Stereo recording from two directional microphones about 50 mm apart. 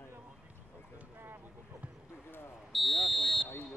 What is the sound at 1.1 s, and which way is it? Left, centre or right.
Speech, right.